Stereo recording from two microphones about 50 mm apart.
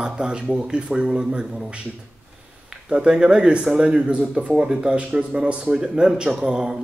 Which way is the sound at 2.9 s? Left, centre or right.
Centre.